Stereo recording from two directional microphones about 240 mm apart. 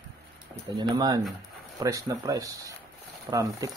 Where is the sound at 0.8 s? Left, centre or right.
Centre.